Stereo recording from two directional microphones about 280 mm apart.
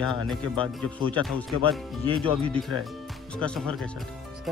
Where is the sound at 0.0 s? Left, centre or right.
Centre.